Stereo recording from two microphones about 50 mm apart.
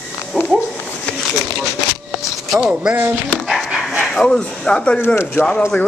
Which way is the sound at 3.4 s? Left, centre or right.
Centre.